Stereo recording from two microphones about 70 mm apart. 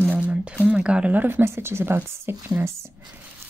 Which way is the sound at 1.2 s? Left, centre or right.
Right.